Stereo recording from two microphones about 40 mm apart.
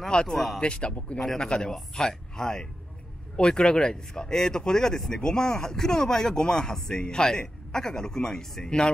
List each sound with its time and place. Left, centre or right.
0.1 s speech: left